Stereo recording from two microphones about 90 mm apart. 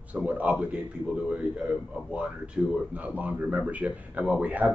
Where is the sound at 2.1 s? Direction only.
10° right (ahead or behind).